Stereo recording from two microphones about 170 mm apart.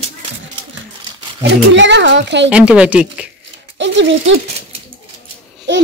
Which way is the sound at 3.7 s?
90° right.